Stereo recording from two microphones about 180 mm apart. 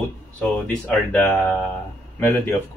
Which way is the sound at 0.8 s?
5° left (ahead or behind).